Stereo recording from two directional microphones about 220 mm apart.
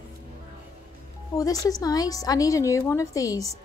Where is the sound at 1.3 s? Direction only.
15° left (ahead or behind).